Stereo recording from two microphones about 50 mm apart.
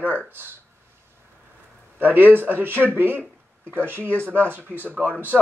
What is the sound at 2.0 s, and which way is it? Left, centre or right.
Speech, right.